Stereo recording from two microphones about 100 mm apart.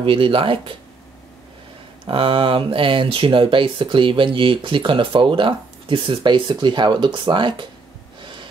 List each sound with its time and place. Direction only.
0.0 s speech: 65° right (ahead or behind)
2.0 s speech: 60° right (ahead or behind)
8.2 s gasp: 55° right (ahead or behind)